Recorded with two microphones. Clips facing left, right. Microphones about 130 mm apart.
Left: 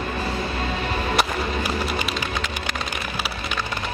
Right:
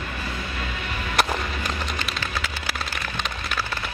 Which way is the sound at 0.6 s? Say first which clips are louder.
Left 6 dB; 35° left (ahead or behind).